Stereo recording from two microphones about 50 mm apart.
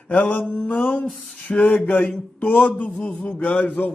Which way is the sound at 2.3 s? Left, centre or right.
Left.